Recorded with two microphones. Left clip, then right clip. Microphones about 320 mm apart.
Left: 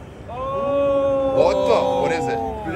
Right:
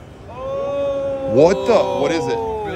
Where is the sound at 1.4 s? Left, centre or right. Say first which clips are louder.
Right 5 dB; right.